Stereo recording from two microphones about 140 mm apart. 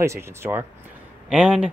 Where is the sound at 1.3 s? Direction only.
5° right (ahead or behind).